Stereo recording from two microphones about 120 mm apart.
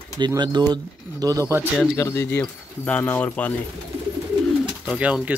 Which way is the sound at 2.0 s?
20° left (ahead or behind).